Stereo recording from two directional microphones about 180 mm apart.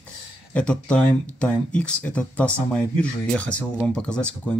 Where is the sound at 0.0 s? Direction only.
5° left (ahead or behind).